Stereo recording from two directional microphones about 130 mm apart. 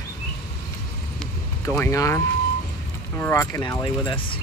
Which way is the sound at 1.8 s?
20° left (ahead or behind).